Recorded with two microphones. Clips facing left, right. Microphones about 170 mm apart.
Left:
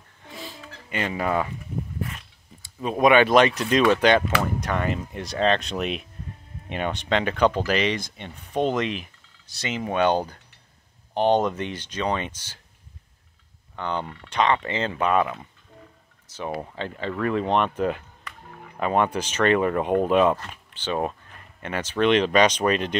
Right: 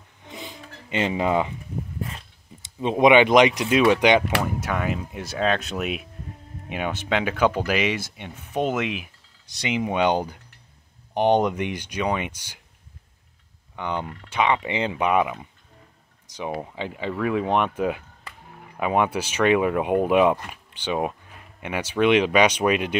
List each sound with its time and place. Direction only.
0.2 s a sound: 20° right (ahead or behind)
2.6 s speech: 20° right (ahead or behind)
13.7 s speech: 10° right (ahead or behind)